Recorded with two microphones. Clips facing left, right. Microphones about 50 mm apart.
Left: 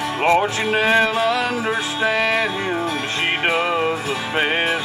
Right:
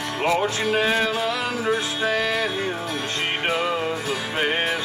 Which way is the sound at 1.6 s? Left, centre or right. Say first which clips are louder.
Left 2 dB; left.